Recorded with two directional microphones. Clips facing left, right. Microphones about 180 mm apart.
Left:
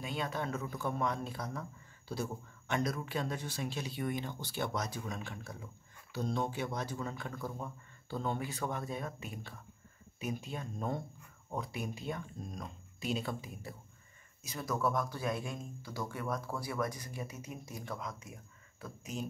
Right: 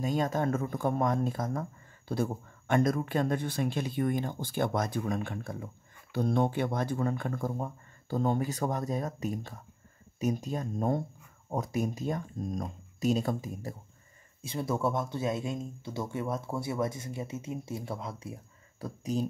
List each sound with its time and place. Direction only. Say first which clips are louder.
0.0 s speech: right 8 dB; 45° right (ahead or behind)
14.4 s speech: right 4 dB; 30° right (ahead or behind)